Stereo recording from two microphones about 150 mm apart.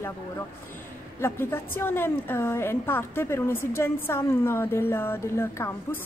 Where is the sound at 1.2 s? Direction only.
15° left (ahead or behind).